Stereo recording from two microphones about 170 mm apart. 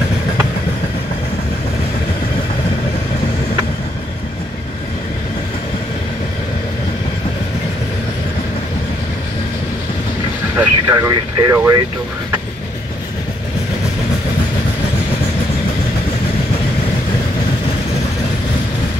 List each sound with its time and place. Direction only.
10.6 s speech: 15° right (ahead or behind)